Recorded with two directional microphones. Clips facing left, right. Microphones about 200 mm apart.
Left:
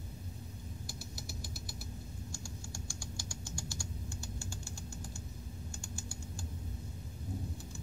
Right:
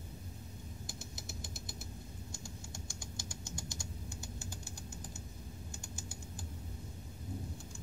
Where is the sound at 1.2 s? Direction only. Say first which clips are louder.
Left 2 dB; 20° right (ahead or behind).